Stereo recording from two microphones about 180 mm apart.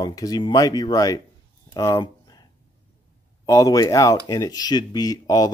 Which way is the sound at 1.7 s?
20° left (ahead or behind).